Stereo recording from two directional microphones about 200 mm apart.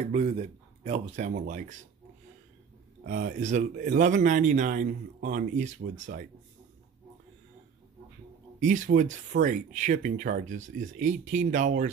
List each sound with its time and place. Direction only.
0.0 s speech: 35° right (ahead or behind)
3.1 s speech: 40° right (ahead or behind)
8.5 s speech: 40° right (ahead or behind)